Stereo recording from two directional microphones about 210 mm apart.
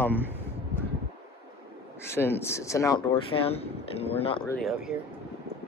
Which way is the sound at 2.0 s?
10° left (ahead or behind).